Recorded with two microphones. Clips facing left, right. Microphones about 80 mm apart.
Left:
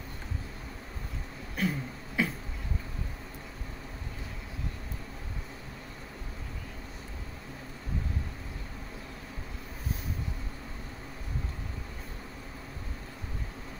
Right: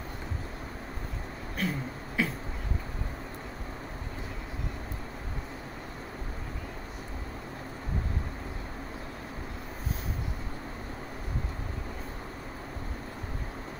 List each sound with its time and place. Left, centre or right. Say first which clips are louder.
1.6 s beatboxing: left 1 dB; centre